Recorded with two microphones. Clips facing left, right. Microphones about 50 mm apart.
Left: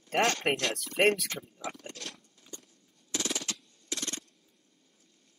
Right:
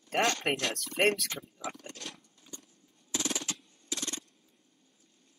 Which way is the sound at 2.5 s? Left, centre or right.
Right.